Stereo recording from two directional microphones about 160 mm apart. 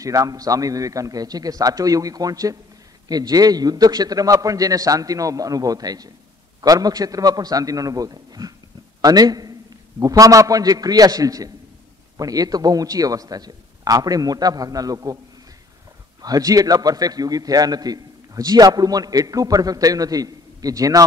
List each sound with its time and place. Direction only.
0.0 s a man's voice: 20° right (ahead or behind)
16.2 s a man's voice: 25° right (ahead or behind)